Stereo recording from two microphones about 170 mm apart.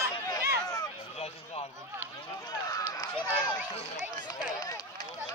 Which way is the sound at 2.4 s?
20° left (ahead or behind).